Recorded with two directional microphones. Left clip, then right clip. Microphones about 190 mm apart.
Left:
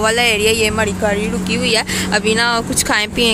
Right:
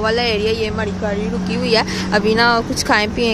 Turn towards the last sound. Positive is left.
turn(degrees=-5)  # may be behind; listen again after turning